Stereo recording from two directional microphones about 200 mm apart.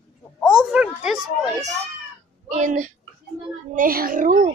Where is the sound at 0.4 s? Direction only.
Centre (ahead or behind).